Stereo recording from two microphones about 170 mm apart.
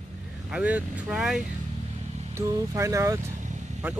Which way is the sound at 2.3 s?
20° right (ahead or behind).